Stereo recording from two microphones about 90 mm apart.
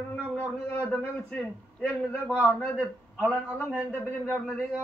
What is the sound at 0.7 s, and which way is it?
Speech, 15° left (ahead or behind).